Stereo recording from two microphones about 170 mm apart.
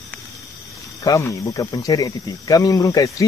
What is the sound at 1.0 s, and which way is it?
Speech, 20° left (ahead or behind).